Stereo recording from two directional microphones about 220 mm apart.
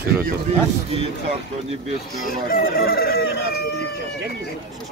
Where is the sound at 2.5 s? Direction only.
40° left (ahead or behind).